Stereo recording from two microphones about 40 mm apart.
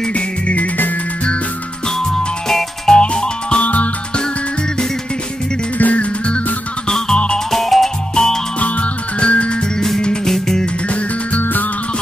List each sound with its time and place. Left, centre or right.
0.1 s music: left
2.0 s music: centre
2.9 s music: left
3.6 s music: left
5.8 s music: left
7.3 s music: centre
8.1 s music: centre
8.5 s music: left
9.8 s music: centre